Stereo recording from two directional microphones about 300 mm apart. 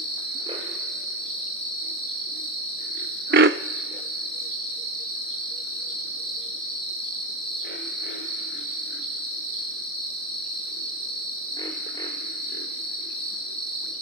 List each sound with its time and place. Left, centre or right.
3.3 s frog: right